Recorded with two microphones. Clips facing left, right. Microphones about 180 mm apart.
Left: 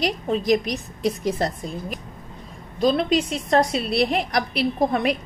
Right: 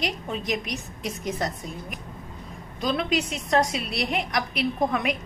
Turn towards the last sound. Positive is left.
turn(degrees=35)  # may be behind; listen again after turning